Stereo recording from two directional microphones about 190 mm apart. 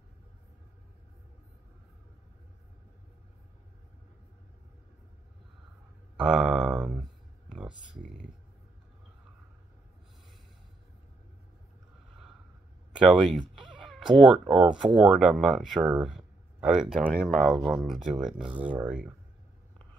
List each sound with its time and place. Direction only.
6.1 s a sound: 5° right (ahead or behind)
12.9 s cat: centre (ahead or behind)
14.4 s speech: 25° right (ahead or behind)
14.7 s speech: 5° right (ahead or behind)